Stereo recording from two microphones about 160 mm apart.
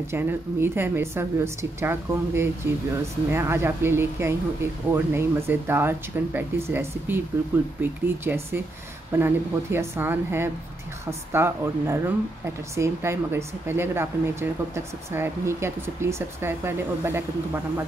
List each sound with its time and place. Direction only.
0.1 s a woman's voice: 15° right (ahead or behind)